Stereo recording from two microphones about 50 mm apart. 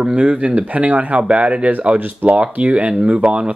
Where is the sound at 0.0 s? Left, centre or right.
Right.